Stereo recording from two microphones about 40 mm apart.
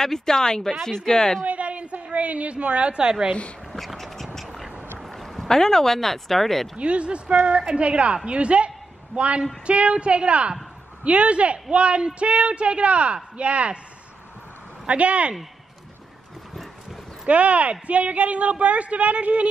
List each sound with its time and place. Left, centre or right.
0.0 s speech: centre
1.4 s a woman's voice: right
3.7 s a sound: centre
5.5 s speech: centre
6.8 s a woman's voice: right
14.9 s a woman's voice: right
17.3 s a woman's voice: right